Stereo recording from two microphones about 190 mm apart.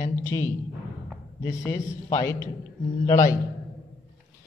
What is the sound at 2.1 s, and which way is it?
A man's voice, 20° left (ahead or behind).